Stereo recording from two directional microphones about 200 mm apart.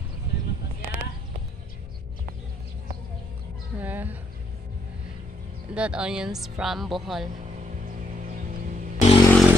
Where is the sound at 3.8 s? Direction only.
10° right (ahead or behind).